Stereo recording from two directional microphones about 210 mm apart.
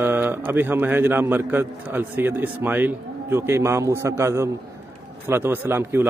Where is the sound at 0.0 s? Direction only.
10° right (ahead or behind).